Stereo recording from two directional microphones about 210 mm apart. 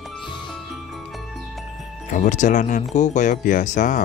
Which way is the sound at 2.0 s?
35° left (ahead or behind).